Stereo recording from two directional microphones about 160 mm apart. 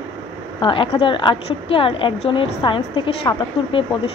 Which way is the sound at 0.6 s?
35° left (ahead or behind).